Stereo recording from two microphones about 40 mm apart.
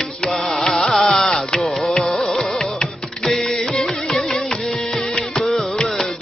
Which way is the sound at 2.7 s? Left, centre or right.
Centre.